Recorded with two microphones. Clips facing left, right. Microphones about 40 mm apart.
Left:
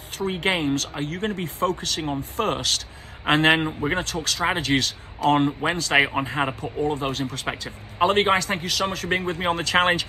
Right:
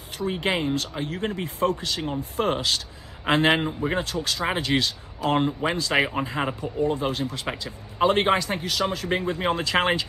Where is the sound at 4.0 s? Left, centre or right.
Left.